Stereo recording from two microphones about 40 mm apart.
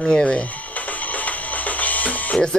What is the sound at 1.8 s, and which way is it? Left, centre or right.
Music, left.